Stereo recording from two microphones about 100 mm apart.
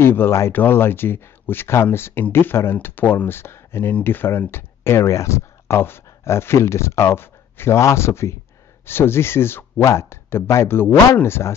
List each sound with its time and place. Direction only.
0.0 s speech: 25° left (ahead or behind)